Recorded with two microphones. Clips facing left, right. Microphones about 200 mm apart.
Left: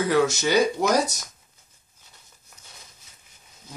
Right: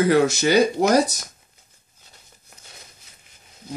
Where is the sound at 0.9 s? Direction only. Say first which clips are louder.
Right 5 dB; 30° right (ahead or behind).